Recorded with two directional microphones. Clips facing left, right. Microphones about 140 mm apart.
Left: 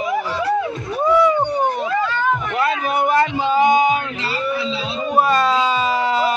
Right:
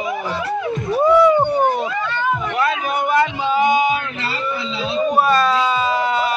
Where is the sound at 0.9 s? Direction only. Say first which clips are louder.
Right 3 dB; 5° right (ahead or behind).